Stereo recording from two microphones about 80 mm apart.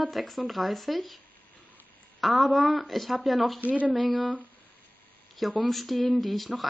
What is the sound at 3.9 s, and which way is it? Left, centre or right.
Speech, centre.